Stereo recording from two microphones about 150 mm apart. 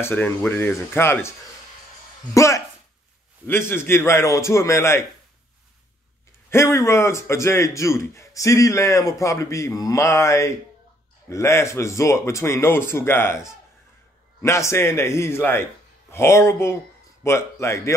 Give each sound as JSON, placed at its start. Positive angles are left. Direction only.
{"t": 0.0, "sound": "a man's voice", "side_deg": 15}
{"t": 2.3, "sound": "a man's voice", "side_deg": 20}
{"t": 6.5, "sound": "a man's voice", "side_deg": 20}